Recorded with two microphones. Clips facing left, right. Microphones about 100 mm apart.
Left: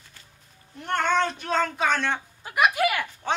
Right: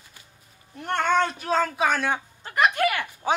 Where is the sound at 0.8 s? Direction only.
5° right (ahead or behind).